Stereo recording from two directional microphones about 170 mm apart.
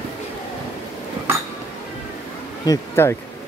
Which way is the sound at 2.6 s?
15° left (ahead or behind).